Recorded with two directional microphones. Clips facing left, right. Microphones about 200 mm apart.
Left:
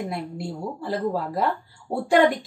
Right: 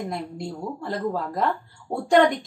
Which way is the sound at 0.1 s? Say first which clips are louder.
Even; 5° left (ahead or behind).